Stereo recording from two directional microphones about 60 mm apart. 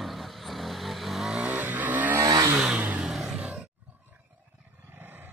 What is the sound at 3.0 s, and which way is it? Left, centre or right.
Vehicle, centre.